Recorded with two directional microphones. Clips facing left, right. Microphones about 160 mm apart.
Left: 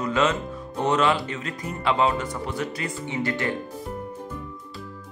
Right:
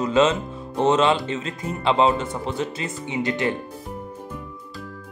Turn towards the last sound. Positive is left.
turn(degrees=-20)  # may be behind; listen again after turning